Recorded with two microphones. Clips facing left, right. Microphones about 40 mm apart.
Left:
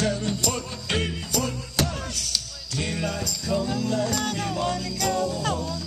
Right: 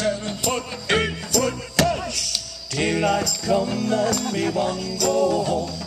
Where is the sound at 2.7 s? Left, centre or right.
Right.